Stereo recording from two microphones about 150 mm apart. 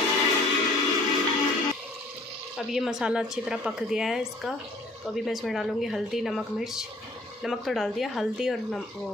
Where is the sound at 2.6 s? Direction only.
5° right (ahead or behind).